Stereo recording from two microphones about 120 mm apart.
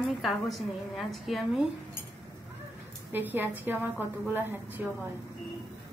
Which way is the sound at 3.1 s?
15° right (ahead or behind).